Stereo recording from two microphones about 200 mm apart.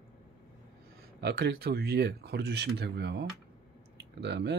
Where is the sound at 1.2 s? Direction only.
50° right (ahead or behind).